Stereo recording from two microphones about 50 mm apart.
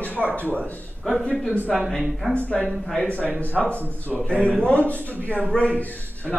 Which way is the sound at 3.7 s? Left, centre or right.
Left.